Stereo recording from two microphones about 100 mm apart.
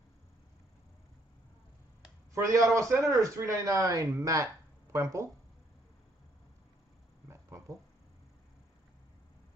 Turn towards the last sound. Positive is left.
turn(degrees=-30)  # may be behind; listen again after turning